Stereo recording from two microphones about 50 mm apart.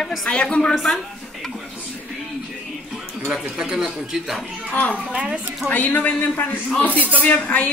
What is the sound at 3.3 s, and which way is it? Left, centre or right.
Speech, centre.